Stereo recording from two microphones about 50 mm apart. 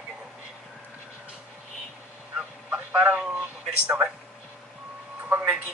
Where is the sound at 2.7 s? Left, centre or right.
Right.